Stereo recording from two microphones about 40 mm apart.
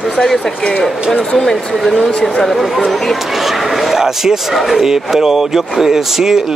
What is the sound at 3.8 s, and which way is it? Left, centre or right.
Speech, centre.